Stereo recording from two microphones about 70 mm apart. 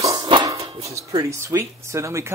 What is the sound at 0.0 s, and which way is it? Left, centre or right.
Music, right.